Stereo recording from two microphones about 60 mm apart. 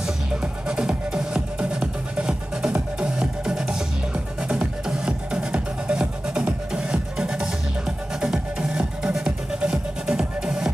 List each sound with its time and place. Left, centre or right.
0.0 s music: centre